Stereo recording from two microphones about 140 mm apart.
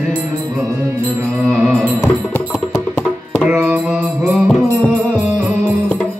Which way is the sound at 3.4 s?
10° right (ahead or behind).